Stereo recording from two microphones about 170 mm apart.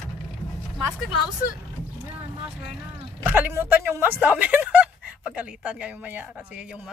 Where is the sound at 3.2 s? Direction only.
10° right (ahead or behind).